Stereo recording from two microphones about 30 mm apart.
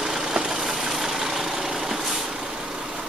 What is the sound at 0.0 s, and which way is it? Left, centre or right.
Vehicle, centre.